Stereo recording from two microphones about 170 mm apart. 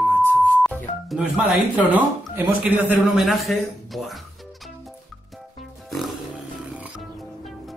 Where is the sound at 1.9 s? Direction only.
10° right (ahead or behind).